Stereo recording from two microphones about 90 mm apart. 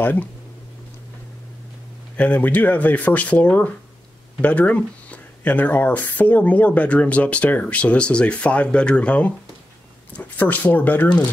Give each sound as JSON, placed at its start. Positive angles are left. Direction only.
{"t": 0.0, "sound": "speech", "side_deg": 20}
{"t": 2.1, "sound": "speech", "side_deg": 15}